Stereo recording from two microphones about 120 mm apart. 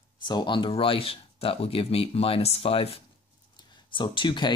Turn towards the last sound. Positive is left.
turn(degrees=40)  # may be behind; listen again after turning